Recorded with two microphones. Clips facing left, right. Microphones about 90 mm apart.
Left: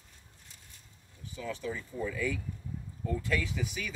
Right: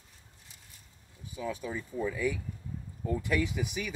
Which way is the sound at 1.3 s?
15° right (ahead or behind).